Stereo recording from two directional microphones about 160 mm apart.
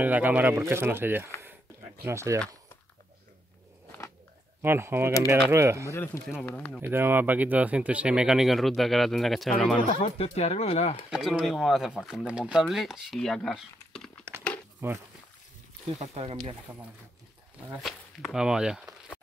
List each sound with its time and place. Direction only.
0.0 s speech: 10° right (ahead or behind)
4.6 s speech: 15° right (ahead or behind)
5.9 s speech: 15° left (ahead or behind)
6.4 s speech: 5° left (ahead or behind)
6.8 s speech: 15° right (ahead or behind)
9.8 s speech: 35° left (ahead or behind)
11.1 s speech: 5° right (ahead or behind)
14.8 s speech: 15° right (ahead or behind)
16.0 s speech: 40° right (ahead or behind)
17.7 s speech: centre (ahead or behind)